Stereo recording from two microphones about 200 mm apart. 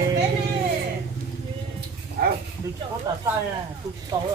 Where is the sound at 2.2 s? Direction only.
50° right (ahead or behind).